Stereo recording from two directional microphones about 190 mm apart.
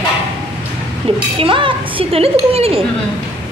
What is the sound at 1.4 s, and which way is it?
A woman's voice, 25° right (ahead or behind).